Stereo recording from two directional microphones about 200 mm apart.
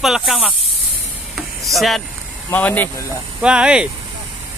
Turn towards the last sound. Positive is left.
turn(degrees=-5)  # may be behind; listen again after turning